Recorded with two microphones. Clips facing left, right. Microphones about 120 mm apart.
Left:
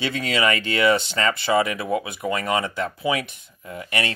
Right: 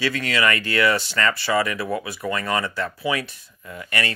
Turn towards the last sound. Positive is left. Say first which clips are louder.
# left 1 dB
turn(degrees=20)  # may be behind; listen again after turning